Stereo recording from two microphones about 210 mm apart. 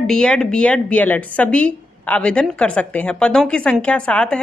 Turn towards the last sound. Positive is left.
turn(degrees=5)  # may be behind; listen again after turning